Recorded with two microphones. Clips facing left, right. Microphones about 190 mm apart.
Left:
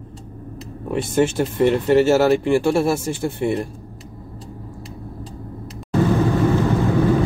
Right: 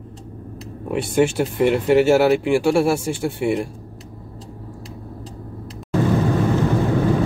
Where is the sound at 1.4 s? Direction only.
10° right (ahead or behind).